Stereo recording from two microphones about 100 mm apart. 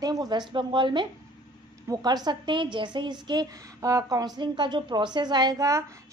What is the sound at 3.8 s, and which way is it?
Speech, 35° right (ahead or behind).